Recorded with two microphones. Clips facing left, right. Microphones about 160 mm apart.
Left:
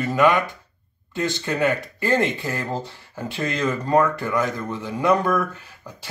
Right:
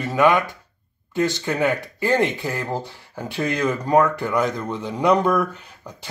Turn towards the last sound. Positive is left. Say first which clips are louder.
# right 1 dB
turn(degrees=-15)  # may be behind; listen again after turning